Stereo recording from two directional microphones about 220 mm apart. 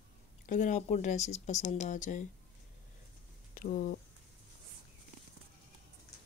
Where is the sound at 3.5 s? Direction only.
40° left (ahead or behind).